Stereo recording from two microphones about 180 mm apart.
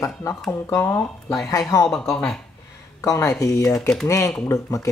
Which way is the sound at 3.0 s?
15° left (ahead or behind).